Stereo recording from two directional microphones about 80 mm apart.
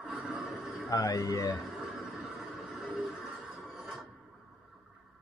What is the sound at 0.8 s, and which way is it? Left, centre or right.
Speech, left.